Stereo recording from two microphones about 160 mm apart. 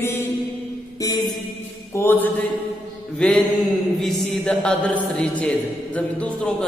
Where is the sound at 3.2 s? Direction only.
5° left (ahead or behind).